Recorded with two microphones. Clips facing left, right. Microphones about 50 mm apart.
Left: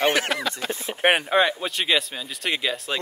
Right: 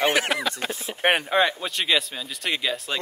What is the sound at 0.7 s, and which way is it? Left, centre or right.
Speech, left.